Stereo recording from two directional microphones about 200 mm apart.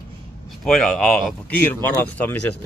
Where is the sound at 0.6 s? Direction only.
Centre (ahead or behind).